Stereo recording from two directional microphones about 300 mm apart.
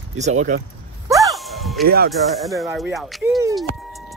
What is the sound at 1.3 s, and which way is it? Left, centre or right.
Music, centre.